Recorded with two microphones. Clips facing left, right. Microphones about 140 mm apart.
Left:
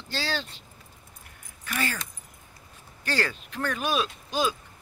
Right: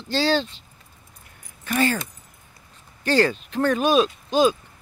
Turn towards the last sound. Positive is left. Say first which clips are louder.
# right 9 dB
turn(degrees=-25)  # may be behind; listen again after turning